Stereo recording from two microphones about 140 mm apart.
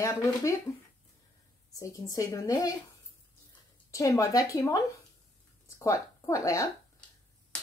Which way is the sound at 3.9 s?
25° left (ahead or behind).